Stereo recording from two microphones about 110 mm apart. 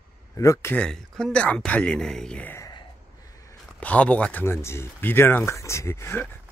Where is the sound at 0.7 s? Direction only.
10° left (ahead or behind).